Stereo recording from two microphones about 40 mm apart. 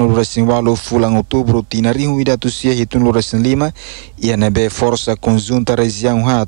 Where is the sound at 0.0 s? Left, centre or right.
Centre.